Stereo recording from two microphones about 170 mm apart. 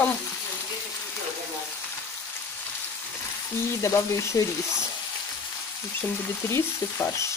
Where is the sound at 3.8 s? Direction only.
20° left (ahead or behind).